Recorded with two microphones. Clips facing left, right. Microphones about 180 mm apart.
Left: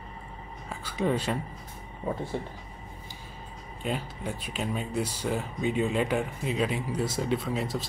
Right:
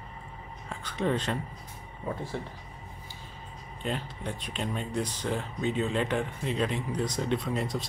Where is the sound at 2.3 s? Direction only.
15° left (ahead or behind).